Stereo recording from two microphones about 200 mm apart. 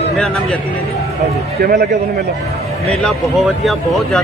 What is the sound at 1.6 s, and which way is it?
Speech, 50° right (ahead or behind).